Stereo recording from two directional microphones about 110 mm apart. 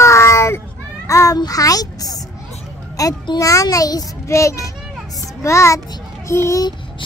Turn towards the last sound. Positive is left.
turn(degrees=25)  # may be behind; listen again after turning